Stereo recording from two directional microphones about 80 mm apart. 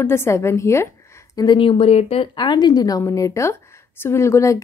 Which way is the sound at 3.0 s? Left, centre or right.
Left.